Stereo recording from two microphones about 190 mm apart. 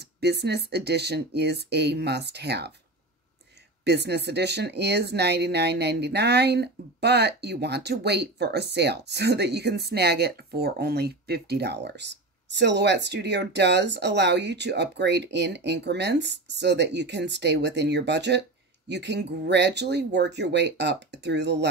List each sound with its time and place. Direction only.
0.0 s speech: 60° right (ahead or behind)
3.8 s speech: 60° right (ahead or behind)